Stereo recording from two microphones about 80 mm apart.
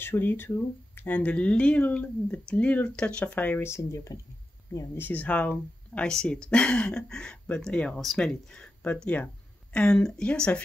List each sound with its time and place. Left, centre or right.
0.0 s speech: left
3.6 s speech: left
4.9 s speech: left